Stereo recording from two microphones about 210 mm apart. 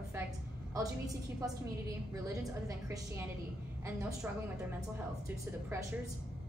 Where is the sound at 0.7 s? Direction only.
15° right (ahead or behind).